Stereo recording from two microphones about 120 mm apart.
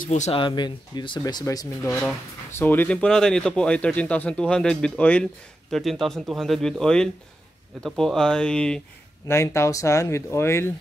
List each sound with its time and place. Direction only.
0.3 s speech: 40° left (ahead or behind)
2.5 s speech: 15° left (ahead or behind)
9.3 s speech: 25° left (ahead or behind)